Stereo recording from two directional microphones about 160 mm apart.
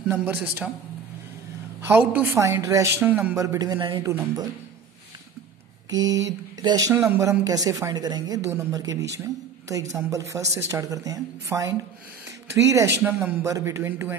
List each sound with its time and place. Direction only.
0.1 s a man's voice: 10° right (ahead or behind)
1.9 s speech: 10° right (ahead or behind); by 4.0 s 30° right (ahead or behind)
4.0 s a man's voice: 15° right (ahead or behind)
5.9 s speech: 25° right (ahead or behind)
13.0 s a man's voice: 15° right (ahead or behind)